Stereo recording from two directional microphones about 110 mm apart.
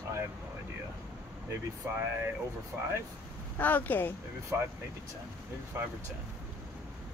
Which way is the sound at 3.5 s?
15° left (ahead or behind).